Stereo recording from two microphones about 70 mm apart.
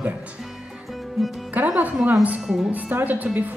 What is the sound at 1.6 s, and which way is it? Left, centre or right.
Music, right.